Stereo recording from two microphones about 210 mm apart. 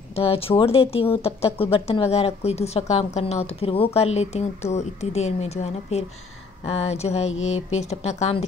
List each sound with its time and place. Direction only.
0.1 s speech: 25° left (ahead or behind)